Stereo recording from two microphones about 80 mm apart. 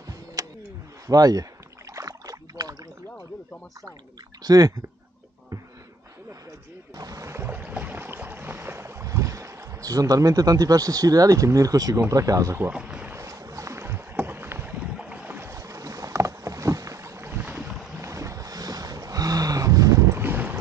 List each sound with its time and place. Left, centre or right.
0.4 s a sound: right
1.0 s speech: right
2.0 s rowboat: right
4.4 s speech: right
7.0 s boat: right
12.1 s speech: right
12.5 s speech: centre
13.1 s boat: right
14.7 s boat: centre
15.2 s boat: right
15.5 s boat: right
18.0 s boat: right